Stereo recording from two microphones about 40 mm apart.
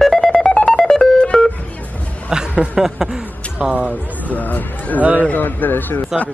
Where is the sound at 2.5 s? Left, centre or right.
Right.